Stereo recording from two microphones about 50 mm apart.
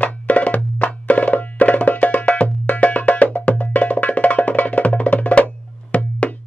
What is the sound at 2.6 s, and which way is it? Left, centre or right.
Wood block, left.